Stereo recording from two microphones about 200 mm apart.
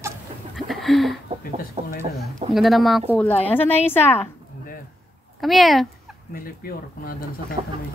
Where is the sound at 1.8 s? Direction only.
30° right (ahead or behind).